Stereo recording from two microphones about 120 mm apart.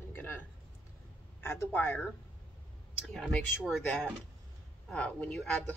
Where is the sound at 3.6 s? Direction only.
Centre (ahead or behind).